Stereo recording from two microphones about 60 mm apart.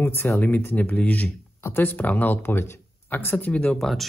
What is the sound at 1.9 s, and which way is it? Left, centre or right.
Speech, left.